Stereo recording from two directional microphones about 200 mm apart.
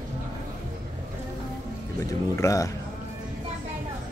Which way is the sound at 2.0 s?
15° left (ahead or behind).